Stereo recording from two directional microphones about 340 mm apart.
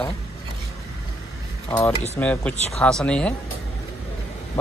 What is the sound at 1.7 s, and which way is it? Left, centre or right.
Speech, centre.